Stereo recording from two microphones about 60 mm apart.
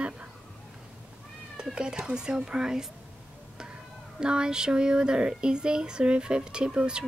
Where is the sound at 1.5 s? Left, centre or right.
Centre.